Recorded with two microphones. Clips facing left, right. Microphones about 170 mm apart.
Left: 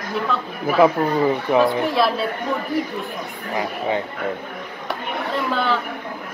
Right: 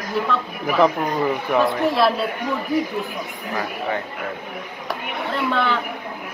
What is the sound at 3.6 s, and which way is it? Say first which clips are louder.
Speech: left 3 dB; 20° left (ahead or behind).